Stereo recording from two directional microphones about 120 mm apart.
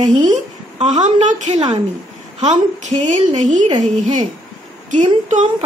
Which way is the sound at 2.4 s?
80° right.